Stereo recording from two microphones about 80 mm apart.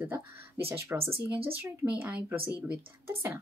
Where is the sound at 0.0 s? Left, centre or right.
Right.